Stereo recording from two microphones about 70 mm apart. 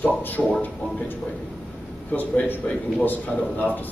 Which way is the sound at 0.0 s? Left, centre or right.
Left.